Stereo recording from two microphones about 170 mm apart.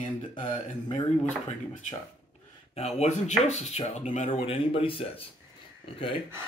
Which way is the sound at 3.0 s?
45° left (ahead or behind).